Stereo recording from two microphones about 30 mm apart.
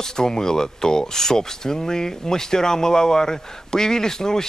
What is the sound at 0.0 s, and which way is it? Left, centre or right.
Speech, centre.